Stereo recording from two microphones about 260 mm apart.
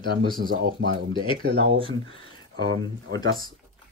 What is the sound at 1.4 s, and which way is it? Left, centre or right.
Speech, right.